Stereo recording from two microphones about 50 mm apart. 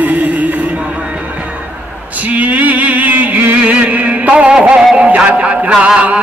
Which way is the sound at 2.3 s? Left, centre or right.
Right.